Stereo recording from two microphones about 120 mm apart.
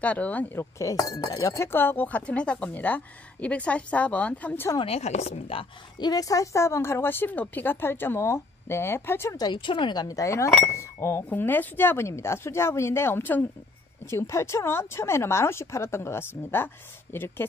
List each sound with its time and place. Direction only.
0.0 s speech: 10° left (ahead or behind)
0.7 s speech: 30° left (ahead or behind); by 4.6 s 10° left (ahead or behind)
4.7 s speech: 55° left (ahead or behind)
6.0 s a woman's voice: 30° left (ahead or behind)
9.4 s speech: 40° left (ahead or behind)
10.0 s a woman's voice: 25° left (ahead or behind)